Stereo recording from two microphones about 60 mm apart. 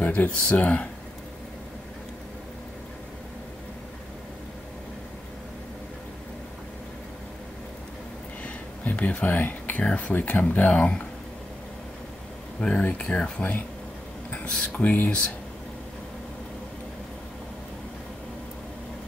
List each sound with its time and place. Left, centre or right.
0.0 s a sound: left
0.3 s speech: centre
8.8 s speech: left
12.5 s speech: centre
14.5 s speech: centre
14.8 s speech: left